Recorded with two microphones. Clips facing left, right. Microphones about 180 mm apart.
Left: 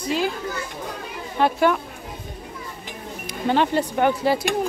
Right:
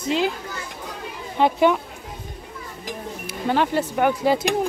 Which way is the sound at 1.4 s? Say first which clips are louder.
Right 1 dB; 20° right (ahead or behind).